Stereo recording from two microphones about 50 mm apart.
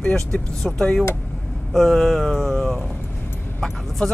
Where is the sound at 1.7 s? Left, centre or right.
Centre.